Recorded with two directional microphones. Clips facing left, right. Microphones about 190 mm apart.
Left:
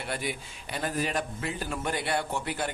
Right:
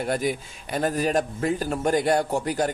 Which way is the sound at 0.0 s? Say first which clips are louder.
Right 9 dB; 40° right (ahead or behind).